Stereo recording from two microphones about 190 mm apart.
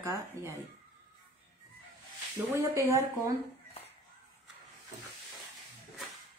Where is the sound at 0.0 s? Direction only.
15° right (ahead or behind).